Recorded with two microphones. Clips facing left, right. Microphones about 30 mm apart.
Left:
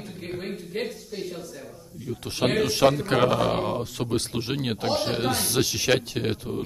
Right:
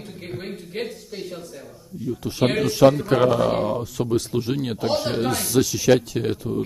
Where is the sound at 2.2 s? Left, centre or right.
Left.